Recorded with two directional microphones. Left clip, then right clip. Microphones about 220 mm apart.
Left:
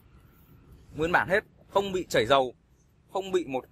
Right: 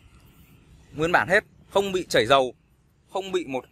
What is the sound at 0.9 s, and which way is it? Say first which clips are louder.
A man's voice: right 4 dB; 15° right (ahead or behind).